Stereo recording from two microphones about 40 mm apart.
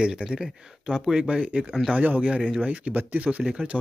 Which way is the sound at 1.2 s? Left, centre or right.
Right.